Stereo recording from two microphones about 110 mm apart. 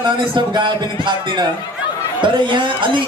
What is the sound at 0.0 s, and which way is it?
Speech, 45° right (ahead or behind).